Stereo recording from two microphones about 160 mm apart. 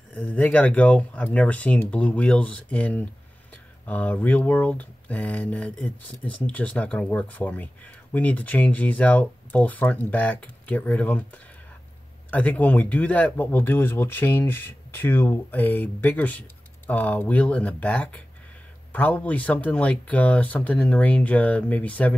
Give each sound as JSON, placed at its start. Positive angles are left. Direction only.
{"t": 0.1, "sound": "speech", "side_deg": 10}